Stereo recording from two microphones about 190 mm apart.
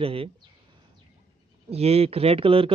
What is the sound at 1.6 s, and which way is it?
Speech, 30° right (ahead or behind).